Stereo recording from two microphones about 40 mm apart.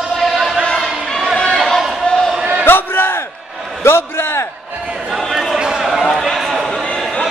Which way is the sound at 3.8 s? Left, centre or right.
Left.